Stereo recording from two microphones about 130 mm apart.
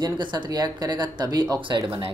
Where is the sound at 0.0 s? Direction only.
35° right (ahead or behind).